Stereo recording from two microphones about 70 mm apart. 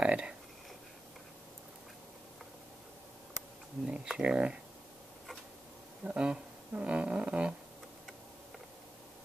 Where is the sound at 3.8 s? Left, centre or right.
Centre.